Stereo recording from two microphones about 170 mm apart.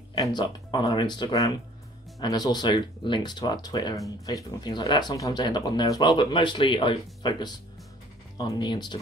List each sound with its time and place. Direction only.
0.1 s speech: 25° left (ahead or behind)